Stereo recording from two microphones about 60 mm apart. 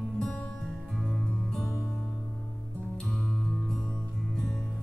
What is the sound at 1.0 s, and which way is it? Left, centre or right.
Music, centre.